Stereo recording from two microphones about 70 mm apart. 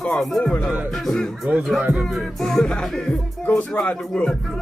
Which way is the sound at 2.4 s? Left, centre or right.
Centre.